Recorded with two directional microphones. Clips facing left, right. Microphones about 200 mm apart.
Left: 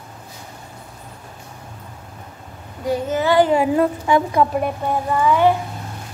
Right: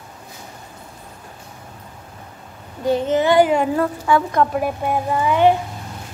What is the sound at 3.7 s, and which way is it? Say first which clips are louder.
Speech: left 2 dB; 20° left (ahead or behind).